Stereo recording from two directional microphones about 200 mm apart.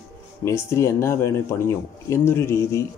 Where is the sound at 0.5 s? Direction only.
15° left (ahead or behind).